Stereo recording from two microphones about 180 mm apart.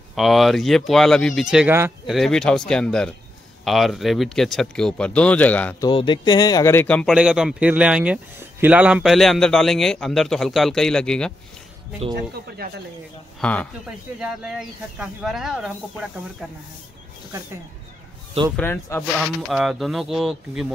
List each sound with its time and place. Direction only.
0.1 s speech: centre (ahead or behind)
5.8 s speech: 25° left (ahead or behind); by 11.3 s 5° left (ahead or behind)
12.6 s speech: 55° right (ahead or behind)
13.4 s speech: 10° left (ahead or behind)
13.8 s speech: 5° right (ahead or behind)
18.6 s speech: 10° left (ahead or behind)
19.5 s speech: centre (ahead or behind)